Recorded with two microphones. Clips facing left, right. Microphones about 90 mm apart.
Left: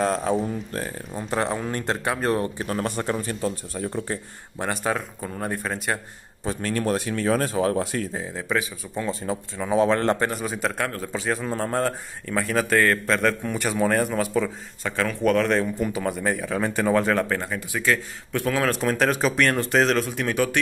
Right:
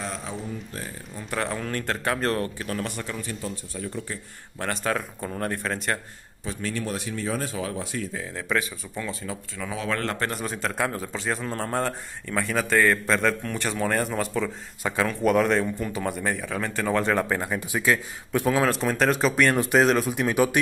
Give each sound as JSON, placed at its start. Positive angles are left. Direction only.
{"t": 0.0, "sound": "speech", "side_deg": 50}
{"t": 1.3, "sound": "a man's voice", "side_deg": 20}
{"t": 2.6, "sound": "speech", "side_deg": 35}
{"t": 4.6, "sound": "speech", "side_deg": 15}
{"t": 6.4, "sound": "speech", "side_deg": 45}
{"t": 7.5, "sound": "speech", "side_deg": 45}
{"t": 8.4, "sound": "speech", "side_deg": 10}
{"t": 8.9, "sound": "a man's voice", "side_deg": 30}
{"t": 10.3, "sound": "speech", "side_deg": 5}
{"t": 14.8, "sound": "speech", "side_deg": -10}
{"t": 16.9, "sound": "speech", "side_deg": 0}
{"t": 17.3, "sound": "speech", "side_deg": -15}